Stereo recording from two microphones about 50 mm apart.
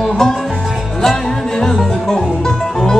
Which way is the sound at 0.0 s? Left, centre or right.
Centre.